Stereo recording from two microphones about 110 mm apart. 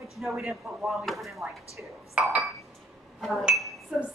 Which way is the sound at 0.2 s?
Centre (ahead or behind).